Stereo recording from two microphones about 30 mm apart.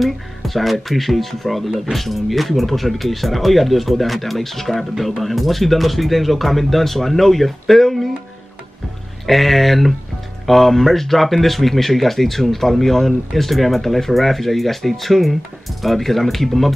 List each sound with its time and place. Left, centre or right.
0.0 s speech: centre
9.2 s speech: centre